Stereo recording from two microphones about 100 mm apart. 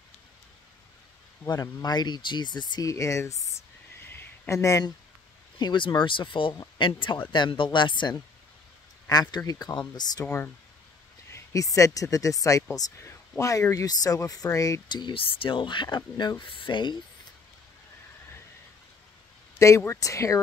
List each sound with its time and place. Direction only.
1.5 s speech: 45° left (ahead or behind)
2.9 s speech: 30° left (ahead or behind)
4.1 s a sound: 25° left (ahead or behind)
5.6 s speech: 50° left (ahead or behind)
11.3 s speech: 35° left (ahead or behind)
14.9 s speech: 50° left (ahead or behind)
19.8 s speech: 30° left (ahead or behind)